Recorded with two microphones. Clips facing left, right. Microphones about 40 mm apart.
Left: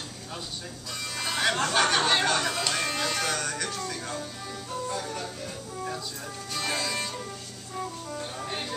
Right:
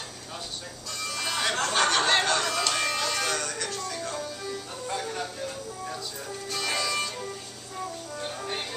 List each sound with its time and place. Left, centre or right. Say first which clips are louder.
1.0 s music: left 1 dB; centre
4.8 s music: right 2 dB; right
6.5 s music: right 1 dB; centre